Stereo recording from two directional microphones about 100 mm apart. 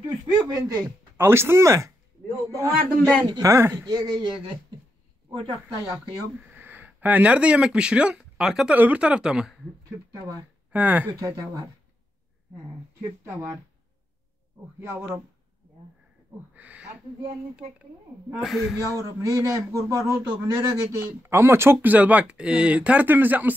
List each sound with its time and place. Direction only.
0.0 s a sound: 50° right (ahead or behind)
0.6 s a man's voice: 40° right (ahead or behind)
1.1 s a man's voice: 25° right (ahead or behind)
3.8 s a man's voice: 40° right (ahead or behind)
5.3 s a woman's voice: 60° right (ahead or behind)
6.4 s speech: 20° right (ahead or behind)
10.7 s speech: 15° right (ahead or behind)
13.2 s a man's voice: 25° right (ahead or behind)
14.8 s a man's voice: 30° right (ahead or behind)
16.5 s owl: 15° right (ahead or behind)
18.3 s speech: centre (ahead or behind)
18.9 s a man's voice: 30° right (ahead or behind)